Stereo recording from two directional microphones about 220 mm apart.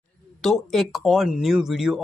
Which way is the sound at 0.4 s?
Centre (ahead or behind).